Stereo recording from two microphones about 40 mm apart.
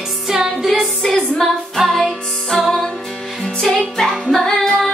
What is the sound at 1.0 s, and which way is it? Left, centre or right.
Music, centre.